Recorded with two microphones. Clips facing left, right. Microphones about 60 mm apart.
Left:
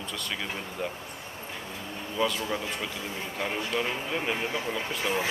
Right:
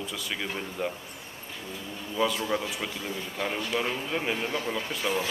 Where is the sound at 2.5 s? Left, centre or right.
Centre.